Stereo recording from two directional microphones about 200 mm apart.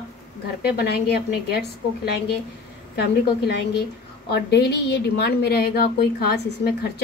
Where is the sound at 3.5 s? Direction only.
55° left (ahead or behind).